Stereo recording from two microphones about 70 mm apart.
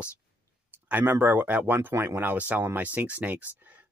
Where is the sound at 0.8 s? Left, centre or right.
Right.